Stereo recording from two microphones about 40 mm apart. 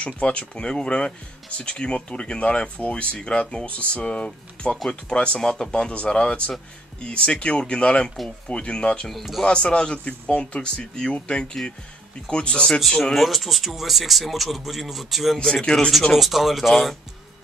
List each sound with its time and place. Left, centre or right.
0.0 s a man's voice: left
9.1 s speech: centre
9.4 s a man's voice: left
13.1 s speech: centre
15.5 s a man's voice: left
16.1 s speech: centre